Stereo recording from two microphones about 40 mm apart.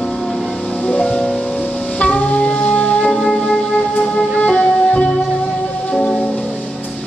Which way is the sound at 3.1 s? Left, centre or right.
Centre.